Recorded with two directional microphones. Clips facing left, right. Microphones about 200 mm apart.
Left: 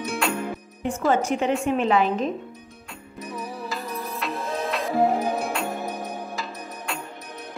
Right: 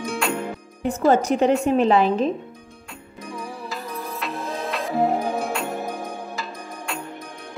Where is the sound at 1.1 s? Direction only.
40° right (ahead or behind).